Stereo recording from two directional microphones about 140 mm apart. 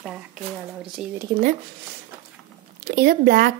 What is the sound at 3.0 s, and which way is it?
Speech, 90° right.